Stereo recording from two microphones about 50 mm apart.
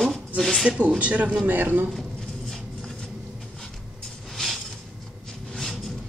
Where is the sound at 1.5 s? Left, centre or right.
Right.